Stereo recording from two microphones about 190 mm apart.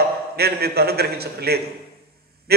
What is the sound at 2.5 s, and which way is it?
Honk, 55° right (ahead or behind).